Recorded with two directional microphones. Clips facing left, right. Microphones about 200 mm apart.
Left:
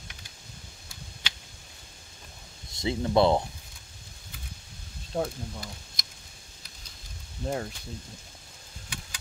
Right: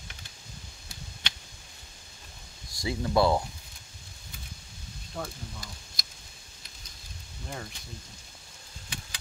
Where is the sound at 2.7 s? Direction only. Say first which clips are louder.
Left 2 dB; 25° left (ahead or behind).